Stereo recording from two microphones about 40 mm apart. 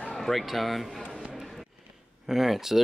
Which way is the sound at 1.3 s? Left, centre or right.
Centre.